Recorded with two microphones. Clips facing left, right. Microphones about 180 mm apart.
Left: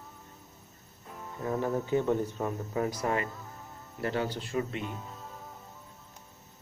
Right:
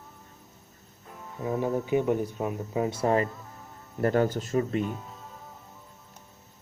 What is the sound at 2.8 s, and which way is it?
Speech, 30° right (ahead or behind).